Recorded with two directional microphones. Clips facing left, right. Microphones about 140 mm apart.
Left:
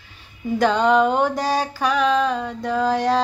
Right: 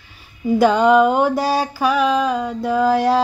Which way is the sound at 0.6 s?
5° right (ahead or behind).